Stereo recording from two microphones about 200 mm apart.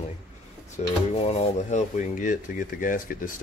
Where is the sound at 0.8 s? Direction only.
35° left (ahead or behind).